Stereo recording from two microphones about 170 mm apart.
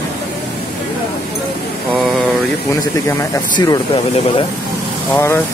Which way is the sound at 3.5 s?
25° left (ahead or behind).